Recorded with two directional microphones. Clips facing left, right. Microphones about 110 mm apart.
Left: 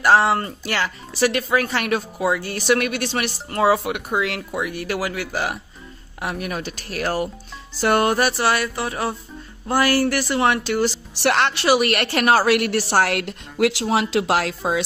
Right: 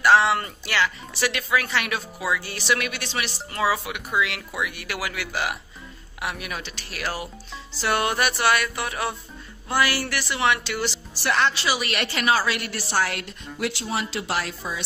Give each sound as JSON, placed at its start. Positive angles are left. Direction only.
{"t": 0.0, "sound": "speech", "side_deg": 40}
{"t": 7.7, "sound": "music", "side_deg": 45}
{"t": 9.7, "sound": "speech", "side_deg": 45}
{"t": 11.2, "sound": "a woman's voice", "side_deg": 65}